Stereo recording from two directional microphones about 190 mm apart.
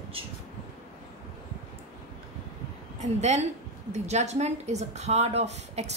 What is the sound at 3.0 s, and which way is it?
A woman's voice, 35° right (ahead or behind).